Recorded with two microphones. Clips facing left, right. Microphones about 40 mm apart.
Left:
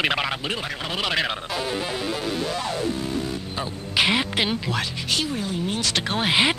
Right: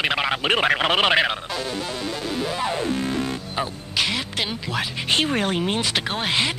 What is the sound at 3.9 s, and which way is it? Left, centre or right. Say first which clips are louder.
Speech: left 3 dB; centre.